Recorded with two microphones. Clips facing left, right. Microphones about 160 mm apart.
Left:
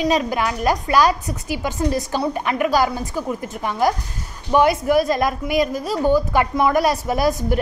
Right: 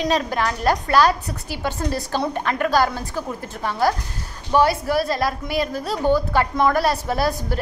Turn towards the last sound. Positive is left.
turn(degrees=15)  # may be behind; listen again after turning